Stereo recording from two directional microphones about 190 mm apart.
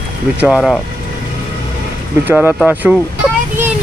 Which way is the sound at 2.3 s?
10° right (ahead or behind).